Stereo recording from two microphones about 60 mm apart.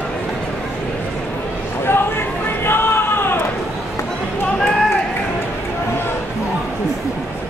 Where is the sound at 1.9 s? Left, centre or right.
Left.